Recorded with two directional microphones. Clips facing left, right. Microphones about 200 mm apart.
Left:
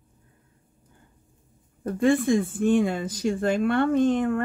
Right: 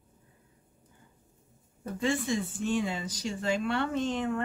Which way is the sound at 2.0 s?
55° left (ahead or behind).